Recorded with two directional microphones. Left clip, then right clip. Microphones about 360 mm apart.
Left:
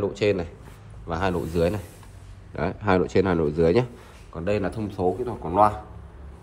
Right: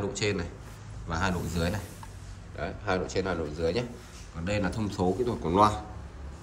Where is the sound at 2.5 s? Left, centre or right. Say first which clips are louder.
Left 8 dB; centre.